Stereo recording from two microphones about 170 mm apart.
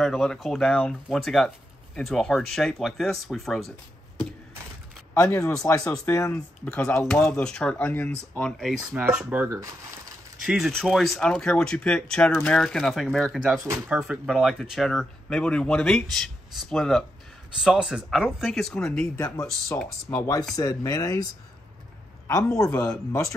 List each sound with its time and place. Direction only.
0.0 s speech: 5° left (ahead or behind)
5.1 s speech: 20° left (ahead or behind); by 19.0 s 5° left (ahead or behind)
20.1 s speech: 20° left (ahead or behind)
22.7 s speech: 10° left (ahead or behind)